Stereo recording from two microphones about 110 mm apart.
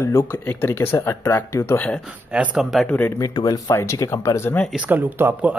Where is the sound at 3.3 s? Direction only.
35° left (ahead or behind).